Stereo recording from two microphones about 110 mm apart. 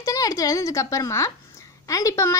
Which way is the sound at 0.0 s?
30° left (ahead or behind).